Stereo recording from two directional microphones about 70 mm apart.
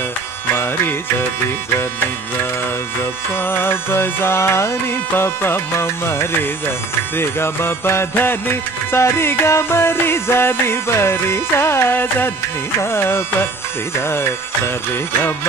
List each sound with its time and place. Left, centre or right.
3.4 s music: left